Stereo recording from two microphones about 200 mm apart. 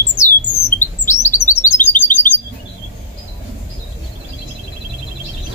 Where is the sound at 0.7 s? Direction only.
10° left (ahead or behind).